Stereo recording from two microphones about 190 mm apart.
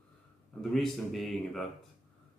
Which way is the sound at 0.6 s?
Centre (ahead or behind).